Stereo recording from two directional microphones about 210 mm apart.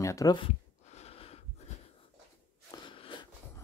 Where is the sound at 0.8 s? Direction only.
30° left (ahead or behind).